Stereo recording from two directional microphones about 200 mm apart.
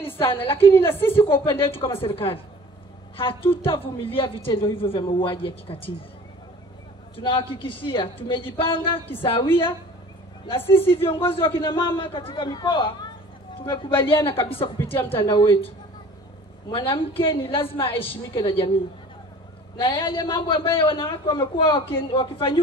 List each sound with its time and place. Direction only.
0.0 s a woman's voice: 10° left (ahead or behind)
1.3 s a woman's voice: 25° left (ahead or behind)
7.2 s a woman's voice: 25° left (ahead or behind)
10.6 s a woman's voice: 10° left (ahead or behind)
10.9 s a woman's voice: 25° left (ahead or behind)
14.8 s a woman's voice: 10° left (ahead or behind)
15.0 s a woman's voice: 25° left (ahead or behind)
16.7 s a woman's voice: 25° left (ahead or behind)
19.8 s a woman's voice: 25° left (ahead or behind)